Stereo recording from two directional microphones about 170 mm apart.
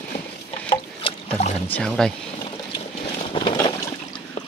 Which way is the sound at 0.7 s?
35° left (ahead or behind).